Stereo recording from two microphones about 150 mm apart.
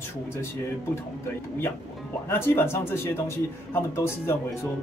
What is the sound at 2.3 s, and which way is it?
Speech, 15° left (ahead or behind).